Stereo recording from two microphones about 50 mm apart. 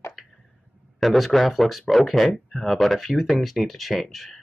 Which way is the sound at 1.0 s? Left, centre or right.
Centre.